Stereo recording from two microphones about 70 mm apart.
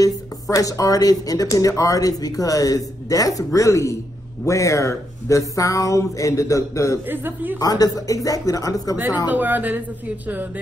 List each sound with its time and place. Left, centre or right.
0.0 s speech: left
7.1 s speech: right
7.6 s speech: left
9.3 s speech: right